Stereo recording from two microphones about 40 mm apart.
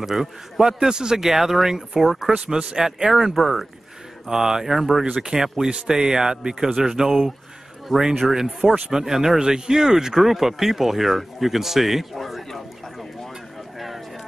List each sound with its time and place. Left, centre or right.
0.0 s speech: centre
2.3 s speech: right; by 3.6 s centre
4.3 s speech: centre
13.7 s a sound: centre